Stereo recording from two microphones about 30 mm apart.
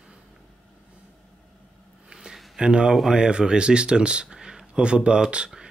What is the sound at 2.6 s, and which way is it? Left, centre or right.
Speech, right.